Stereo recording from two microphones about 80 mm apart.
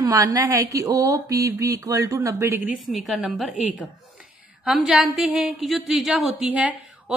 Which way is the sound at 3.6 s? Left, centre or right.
Centre.